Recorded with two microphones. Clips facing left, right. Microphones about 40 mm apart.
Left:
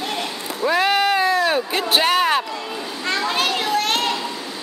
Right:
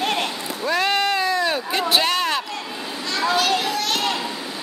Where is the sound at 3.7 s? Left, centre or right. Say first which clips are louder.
Left 3 dB; left.